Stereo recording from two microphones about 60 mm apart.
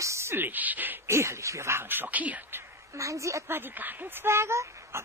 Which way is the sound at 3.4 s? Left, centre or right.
Right.